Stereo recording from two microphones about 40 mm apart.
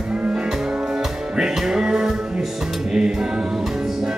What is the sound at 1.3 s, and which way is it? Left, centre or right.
Music, centre.